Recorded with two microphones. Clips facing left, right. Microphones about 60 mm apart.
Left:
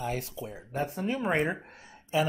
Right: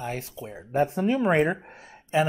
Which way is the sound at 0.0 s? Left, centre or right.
Right.